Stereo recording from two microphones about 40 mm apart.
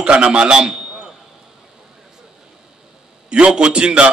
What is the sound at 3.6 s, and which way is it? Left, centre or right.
Speech, right.